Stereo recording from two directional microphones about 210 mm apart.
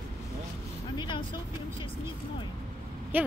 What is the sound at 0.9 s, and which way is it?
Vehicle, 20° left (ahead or behind).